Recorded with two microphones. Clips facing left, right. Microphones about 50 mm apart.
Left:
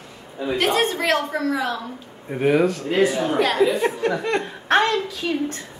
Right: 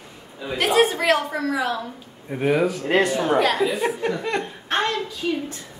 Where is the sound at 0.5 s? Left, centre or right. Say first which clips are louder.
Right 2 dB; centre.